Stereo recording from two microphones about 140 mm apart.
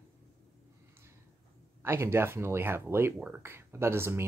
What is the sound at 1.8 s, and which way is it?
Speech, 20° right (ahead or behind).